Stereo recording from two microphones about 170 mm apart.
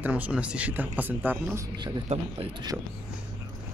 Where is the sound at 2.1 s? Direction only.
40° right (ahead or behind).